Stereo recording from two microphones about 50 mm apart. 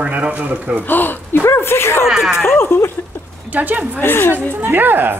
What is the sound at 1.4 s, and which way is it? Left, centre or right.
Speech, left.